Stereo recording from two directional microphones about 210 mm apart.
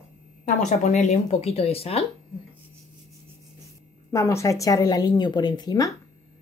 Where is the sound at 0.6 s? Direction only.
35° left (ahead or behind).